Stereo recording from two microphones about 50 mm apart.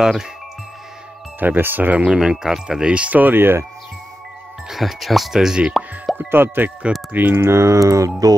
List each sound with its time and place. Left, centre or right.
0.0 s speech: centre
1.4 s speech: right
2.0 s speech: centre
2.9 s speech: right
4.6 s speech: centre
5.7 s plop: centre
6.1 s speech: right
7.3 s speech: right